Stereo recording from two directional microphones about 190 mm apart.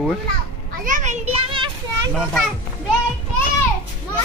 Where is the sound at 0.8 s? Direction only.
40° right (ahead or behind).